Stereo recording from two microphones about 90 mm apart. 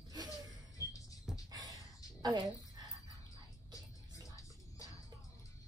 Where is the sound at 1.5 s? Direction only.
45° right (ahead or behind).